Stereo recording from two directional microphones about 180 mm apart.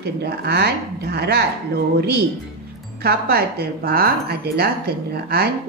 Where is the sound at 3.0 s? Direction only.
60° right (ahead or behind).